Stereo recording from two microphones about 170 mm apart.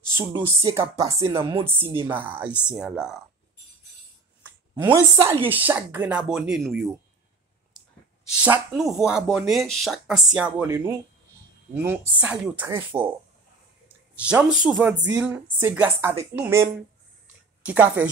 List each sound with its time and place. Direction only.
0.1 s speech: 15° right (ahead or behind)
1.8 s speech: 30° right (ahead or behind)
2.0 s a woman's voice: 10° right (ahead or behind)
4.4 s a sound: 10° right (ahead or behind)
5.2 s a woman's voice: 15° right (ahead or behind)
8.4 s a woman's voice: 5° right (ahead or behind)
14.2 s a woman's voice: 10° right (ahead or behind)